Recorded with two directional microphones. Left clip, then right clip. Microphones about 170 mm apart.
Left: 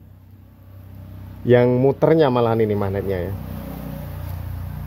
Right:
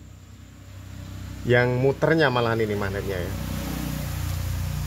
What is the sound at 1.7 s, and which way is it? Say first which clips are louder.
Speech: left 5 dB; 40° left (ahead or behind).